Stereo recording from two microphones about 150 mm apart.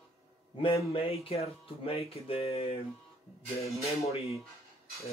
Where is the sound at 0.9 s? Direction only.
40° left (ahead or behind).